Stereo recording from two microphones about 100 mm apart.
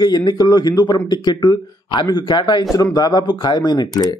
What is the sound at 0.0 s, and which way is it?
Speech, 45° left (ahead or behind).